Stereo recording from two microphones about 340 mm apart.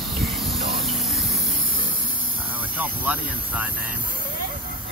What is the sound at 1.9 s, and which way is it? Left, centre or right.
Vehicle, right.